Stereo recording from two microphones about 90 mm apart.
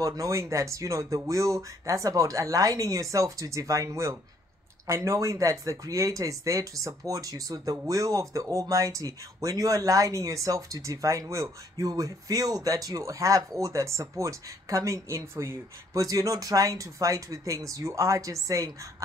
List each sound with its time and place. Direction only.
0.0 s speech: 40° right (ahead or behind)